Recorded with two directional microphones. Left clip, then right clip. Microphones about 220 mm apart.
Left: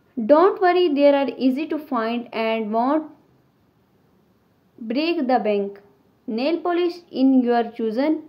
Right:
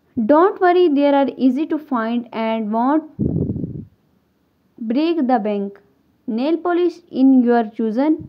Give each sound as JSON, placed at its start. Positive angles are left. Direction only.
{"t": 0.1, "sound": "a woman's voice", "side_deg": -45}
{"t": 4.8, "sound": "a woman's voice", "side_deg": -45}